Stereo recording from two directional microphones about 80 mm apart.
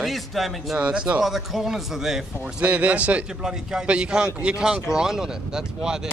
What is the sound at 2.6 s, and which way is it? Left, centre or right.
A man's voice, centre.